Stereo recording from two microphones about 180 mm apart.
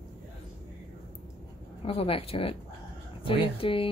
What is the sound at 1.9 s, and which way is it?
Speech, 30° left (ahead or behind).